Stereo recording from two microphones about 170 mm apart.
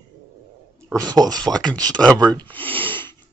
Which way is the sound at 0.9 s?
20° right (ahead or behind).